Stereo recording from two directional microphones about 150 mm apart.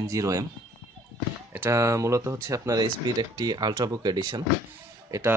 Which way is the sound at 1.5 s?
15° right (ahead or behind).